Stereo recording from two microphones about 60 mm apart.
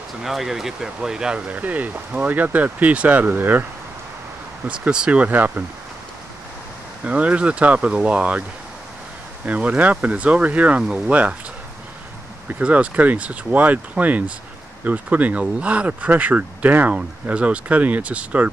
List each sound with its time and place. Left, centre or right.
0.2 s speech: centre
1.5 s speech: right
4.8 s speech: centre
7.1 s speech: right
9.5 s speech: right
12.4 s speech: right